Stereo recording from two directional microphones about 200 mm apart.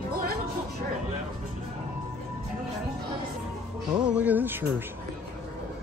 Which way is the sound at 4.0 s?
5° right (ahead or behind).